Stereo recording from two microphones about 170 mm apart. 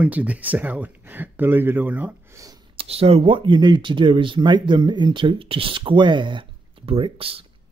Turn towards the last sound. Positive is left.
turn(degrees=-35)  # may be behind; listen again after turning